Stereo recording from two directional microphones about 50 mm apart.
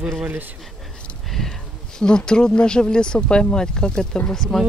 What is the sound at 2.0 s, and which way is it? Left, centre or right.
Speech, centre.